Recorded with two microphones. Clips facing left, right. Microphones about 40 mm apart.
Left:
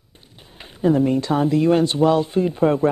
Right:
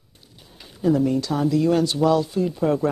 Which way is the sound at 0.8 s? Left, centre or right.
Left.